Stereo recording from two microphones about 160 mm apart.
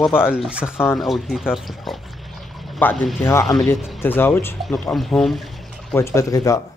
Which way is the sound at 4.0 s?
15° left (ahead or behind).